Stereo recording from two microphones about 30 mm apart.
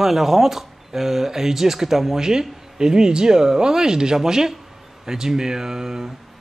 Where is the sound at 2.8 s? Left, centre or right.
Right.